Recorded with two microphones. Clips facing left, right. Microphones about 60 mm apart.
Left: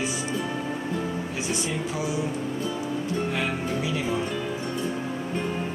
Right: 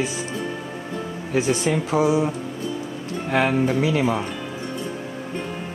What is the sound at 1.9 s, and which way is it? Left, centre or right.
Speech, right.